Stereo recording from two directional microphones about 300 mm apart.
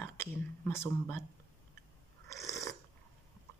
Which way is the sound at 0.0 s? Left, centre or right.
Centre.